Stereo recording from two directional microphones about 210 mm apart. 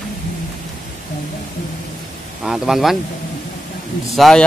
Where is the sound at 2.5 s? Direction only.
Centre (ahead or behind).